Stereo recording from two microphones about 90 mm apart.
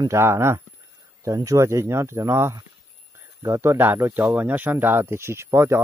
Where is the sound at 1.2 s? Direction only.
40° right (ahead or behind).